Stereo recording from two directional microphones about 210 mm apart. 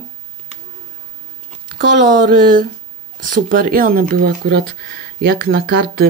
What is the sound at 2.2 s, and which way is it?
Speech, 40° right (ahead or behind).